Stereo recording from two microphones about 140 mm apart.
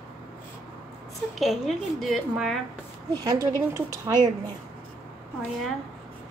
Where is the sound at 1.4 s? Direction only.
Centre (ahead or behind).